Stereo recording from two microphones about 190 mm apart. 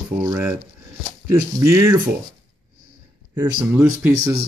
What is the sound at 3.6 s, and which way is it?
Speech, 10° right (ahead or behind).